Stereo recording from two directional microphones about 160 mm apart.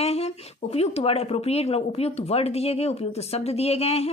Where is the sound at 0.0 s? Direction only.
40° left (ahead or behind).